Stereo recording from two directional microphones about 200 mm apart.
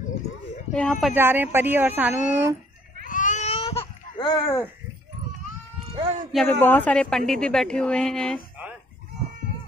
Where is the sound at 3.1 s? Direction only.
40° left (ahead or behind); by 4.6 s 15° left (ahead or behind).